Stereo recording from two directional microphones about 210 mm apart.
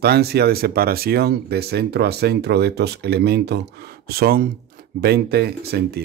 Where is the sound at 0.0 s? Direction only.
50° right (ahead or behind).